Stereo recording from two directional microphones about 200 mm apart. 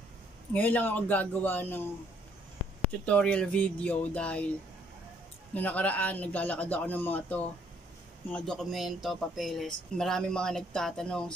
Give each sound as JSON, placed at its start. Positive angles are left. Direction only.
{"t": 0.5, "sound": "a man's voice", "side_deg": 10}
{"t": 3.1, "sound": "a man's voice", "side_deg": 5}
{"t": 5.5, "sound": "a man's voice", "side_deg": 5}